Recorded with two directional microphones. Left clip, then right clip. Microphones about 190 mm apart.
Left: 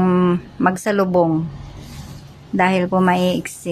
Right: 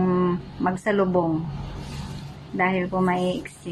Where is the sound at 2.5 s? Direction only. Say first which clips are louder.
Left 7 dB; 60° left (ahead or behind).